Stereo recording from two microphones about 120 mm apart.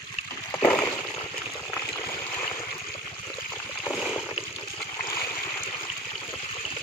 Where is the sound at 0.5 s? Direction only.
20° left (ahead or behind).